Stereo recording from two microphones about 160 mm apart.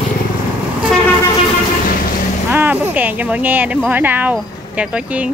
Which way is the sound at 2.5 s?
10° right (ahead or behind).